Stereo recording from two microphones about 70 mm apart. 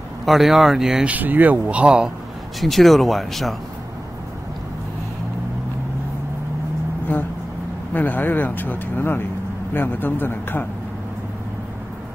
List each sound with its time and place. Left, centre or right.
0.2 s speech: centre
1.0 s speech: right
2.6 s speech: centre
7.1 s speech: left